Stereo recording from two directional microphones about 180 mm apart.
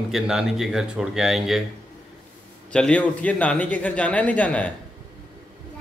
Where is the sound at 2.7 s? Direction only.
5° left (ahead or behind).